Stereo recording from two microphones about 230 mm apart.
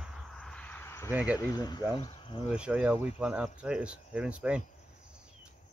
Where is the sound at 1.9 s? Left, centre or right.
Left.